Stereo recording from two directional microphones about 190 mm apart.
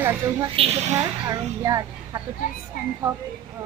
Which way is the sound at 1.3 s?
20° right (ahead or behind).